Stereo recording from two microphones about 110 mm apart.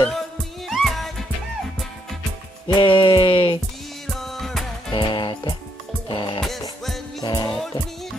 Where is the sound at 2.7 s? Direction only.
50° left (ahead or behind).